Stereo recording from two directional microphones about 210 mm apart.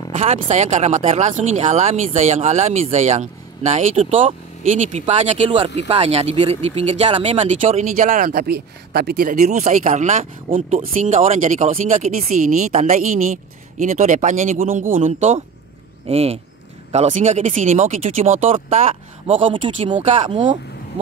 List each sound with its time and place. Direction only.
0.1 s speech: 30° right (ahead or behind)